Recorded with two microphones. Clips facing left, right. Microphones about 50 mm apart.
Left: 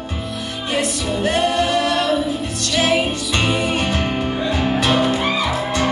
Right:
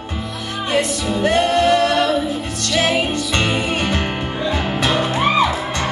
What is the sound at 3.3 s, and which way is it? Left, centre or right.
Music, right.